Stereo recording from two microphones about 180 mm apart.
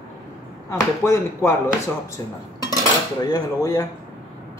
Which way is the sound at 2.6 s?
20° left (ahead or behind).